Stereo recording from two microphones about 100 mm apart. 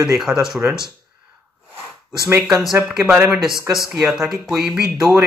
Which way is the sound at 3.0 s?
20° right (ahead or behind).